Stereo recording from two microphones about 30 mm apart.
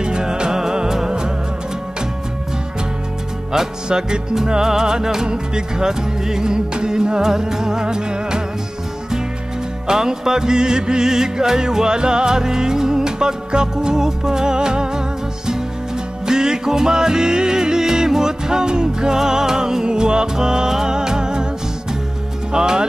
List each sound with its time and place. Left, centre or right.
0.0 s music: right
3.5 s music: right
9.8 s music: centre
16.3 s music: right
22.5 s music: right